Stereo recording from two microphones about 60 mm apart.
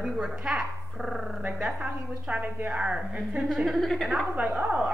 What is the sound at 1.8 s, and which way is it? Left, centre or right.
A woman's voice, right.